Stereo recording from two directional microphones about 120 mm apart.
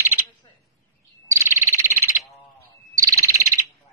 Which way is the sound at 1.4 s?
20° right (ahead or behind).